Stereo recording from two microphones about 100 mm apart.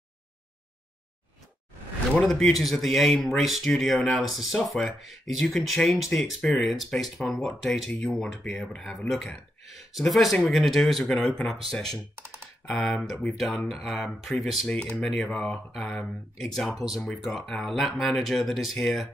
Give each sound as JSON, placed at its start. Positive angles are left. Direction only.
{"t": 2.1, "sound": "speech", "side_deg": 5}
{"t": 12.2, "sound": "computer keyboard", "side_deg": -25}
{"t": 12.7, "sound": "speech", "side_deg": 0}